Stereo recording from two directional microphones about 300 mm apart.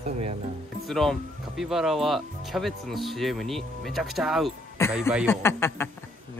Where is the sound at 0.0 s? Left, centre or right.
Right.